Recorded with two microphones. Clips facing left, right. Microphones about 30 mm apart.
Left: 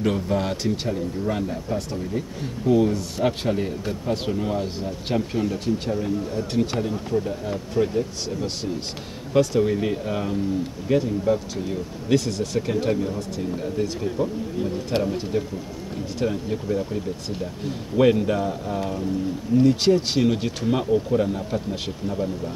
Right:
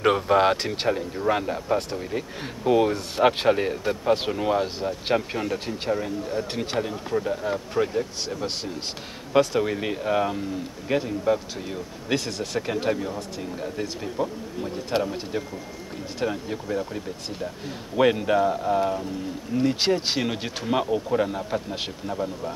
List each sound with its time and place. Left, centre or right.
0.0 s speech: right; by 13.1 s centre
14.9 s speech: centre
15.3 s speech: centre